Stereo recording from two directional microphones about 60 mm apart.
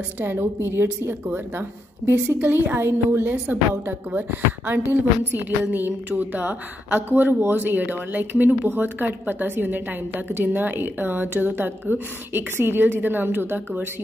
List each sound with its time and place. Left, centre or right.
0.2 s speech: right
4.9 s speech: right